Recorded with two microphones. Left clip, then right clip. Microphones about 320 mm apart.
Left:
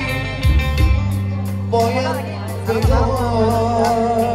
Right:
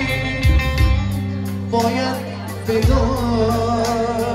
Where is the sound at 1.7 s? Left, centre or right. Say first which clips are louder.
Left 2 dB; centre.